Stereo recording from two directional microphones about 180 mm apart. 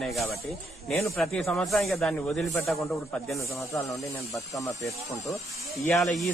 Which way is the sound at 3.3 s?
15° left (ahead or behind).